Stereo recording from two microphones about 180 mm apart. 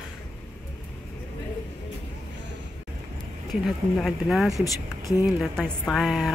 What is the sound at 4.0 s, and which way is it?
A woman's voice, centre (ahead or behind).